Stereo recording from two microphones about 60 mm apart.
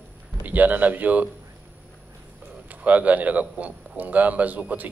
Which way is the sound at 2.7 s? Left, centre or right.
Right.